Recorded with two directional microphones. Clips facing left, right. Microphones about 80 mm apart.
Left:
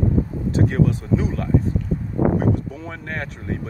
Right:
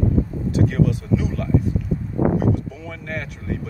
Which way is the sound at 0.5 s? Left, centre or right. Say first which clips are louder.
Even; left.